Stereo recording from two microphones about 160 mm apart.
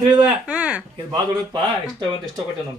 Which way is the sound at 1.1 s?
25° right (ahead or behind).